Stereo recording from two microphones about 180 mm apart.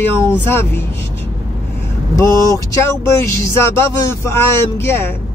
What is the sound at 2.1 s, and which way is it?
Speech, 15° left (ahead or behind).